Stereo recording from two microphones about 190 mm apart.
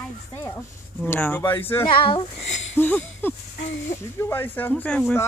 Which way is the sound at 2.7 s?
10° left (ahead or behind).